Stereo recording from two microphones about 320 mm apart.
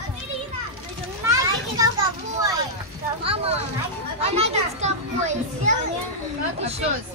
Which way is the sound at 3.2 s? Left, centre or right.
Centre.